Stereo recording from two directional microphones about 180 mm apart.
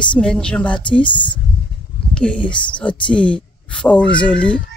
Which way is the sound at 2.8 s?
5° left (ahead or behind).